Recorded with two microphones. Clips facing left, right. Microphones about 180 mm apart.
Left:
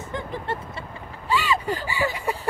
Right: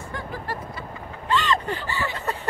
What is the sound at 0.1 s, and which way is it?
Speech, 25° left (ahead or behind).